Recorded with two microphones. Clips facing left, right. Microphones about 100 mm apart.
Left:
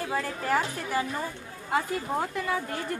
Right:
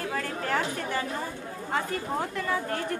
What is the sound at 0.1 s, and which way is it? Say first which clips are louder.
A woman's voice: left 4 dB; 10° left (ahead or behind).